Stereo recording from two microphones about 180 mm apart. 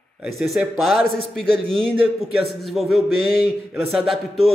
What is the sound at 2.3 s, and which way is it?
Speech, centre (ahead or behind).